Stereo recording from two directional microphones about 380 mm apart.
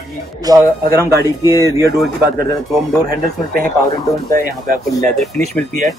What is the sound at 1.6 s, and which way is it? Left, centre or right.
Speech, centre.